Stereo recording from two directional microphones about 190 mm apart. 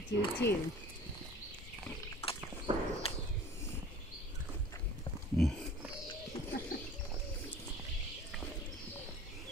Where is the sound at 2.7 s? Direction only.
30° right (ahead or behind).